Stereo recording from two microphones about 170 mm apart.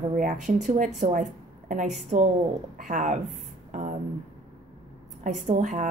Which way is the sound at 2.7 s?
45° right (ahead or behind).